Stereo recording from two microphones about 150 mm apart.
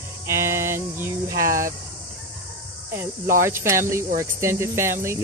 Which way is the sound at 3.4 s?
15° right (ahead or behind).